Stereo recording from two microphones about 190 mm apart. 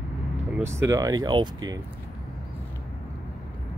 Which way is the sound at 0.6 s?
15° right (ahead or behind).